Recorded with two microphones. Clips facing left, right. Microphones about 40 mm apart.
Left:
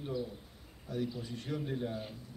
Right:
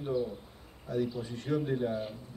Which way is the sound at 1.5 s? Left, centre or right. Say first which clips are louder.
Right 7 dB; centre.